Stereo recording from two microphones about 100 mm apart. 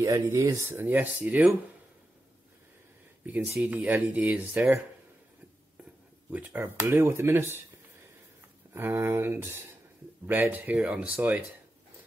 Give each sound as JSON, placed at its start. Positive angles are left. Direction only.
{"t": 0.0, "sound": "speech", "side_deg": -35}
{"t": 0.7, "sound": "speech", "side_deg": -20}
{"t": 3.3, "sound": "speech", "side_deg": -10}
{"t": 6.3, "sound": "speech", "side_deg": -20}
{"t": 8.7, "sound": "speech", "side_deg": -25}